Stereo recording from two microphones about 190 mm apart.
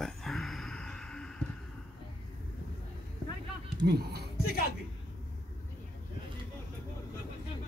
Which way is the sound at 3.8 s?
60° right (ahead or behind).